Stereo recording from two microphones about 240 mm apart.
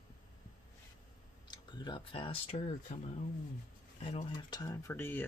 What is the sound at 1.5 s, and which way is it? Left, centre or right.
Speech, centre.